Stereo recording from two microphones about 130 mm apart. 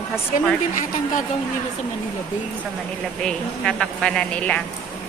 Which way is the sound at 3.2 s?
5° left (ahead or behind).